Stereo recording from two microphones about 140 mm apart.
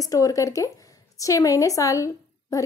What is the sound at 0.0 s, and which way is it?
A woman's voice, 25° left (ahead or behind).